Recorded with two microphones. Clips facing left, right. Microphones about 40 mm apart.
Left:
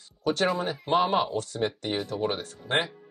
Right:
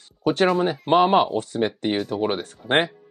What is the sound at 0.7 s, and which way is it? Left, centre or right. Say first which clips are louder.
Speech: right 7 dB; right.